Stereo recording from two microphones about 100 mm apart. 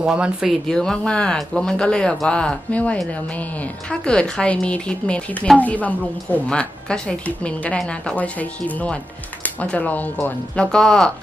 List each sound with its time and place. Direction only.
0.0 s speech: 10° right (ahead or behind)
0.7 s speech: 5° left (ahead or behind)
4.0 s speech: 10° left (ahead or behind)